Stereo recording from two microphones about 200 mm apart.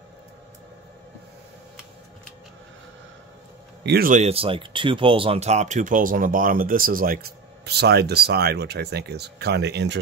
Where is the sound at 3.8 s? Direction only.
50° right (ahead or behind).